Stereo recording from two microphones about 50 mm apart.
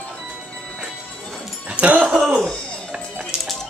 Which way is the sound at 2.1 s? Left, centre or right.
Centre.